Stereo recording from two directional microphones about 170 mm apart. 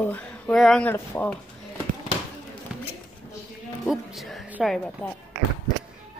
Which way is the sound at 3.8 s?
Centre (ahead or behind).